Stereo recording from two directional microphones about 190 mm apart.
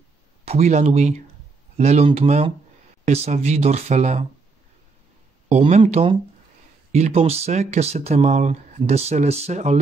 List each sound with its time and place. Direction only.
0.5 s speech: 35° right (ahead or behind)
5.5 s speech: 30° right (ahead or behind)